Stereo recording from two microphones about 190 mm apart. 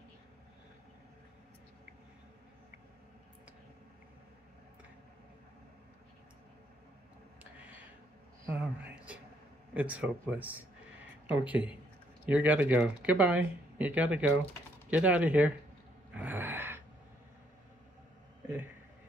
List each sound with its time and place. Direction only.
8.5 s a sound: 10° right (ahead or behind)
9.8 s speech: 5° right (ahead or behind)
16.2 s gasp: 10° right (ahead or behind)